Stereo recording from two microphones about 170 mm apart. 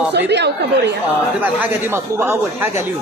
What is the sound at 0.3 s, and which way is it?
Speech, 90° right.